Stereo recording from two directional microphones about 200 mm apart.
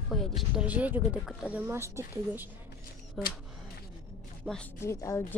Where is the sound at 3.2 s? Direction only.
5° left (ahead or behind).